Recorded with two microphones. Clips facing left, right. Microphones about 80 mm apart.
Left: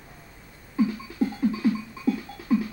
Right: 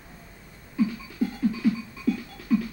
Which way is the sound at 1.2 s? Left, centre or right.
Left.